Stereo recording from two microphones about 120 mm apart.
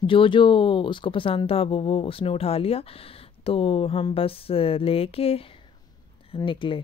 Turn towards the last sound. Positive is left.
turn(degrees=45)  # may be behind; listen again after turning